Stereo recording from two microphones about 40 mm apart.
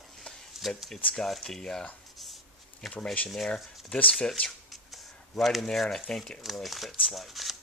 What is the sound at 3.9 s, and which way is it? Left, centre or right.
Speech, left.